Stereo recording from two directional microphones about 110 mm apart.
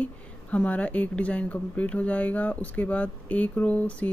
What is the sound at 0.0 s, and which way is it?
Speech, 15° left (ahead or behind).